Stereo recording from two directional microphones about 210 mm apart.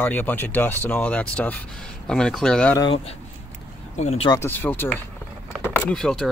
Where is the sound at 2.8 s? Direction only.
25° left (ahead or behind).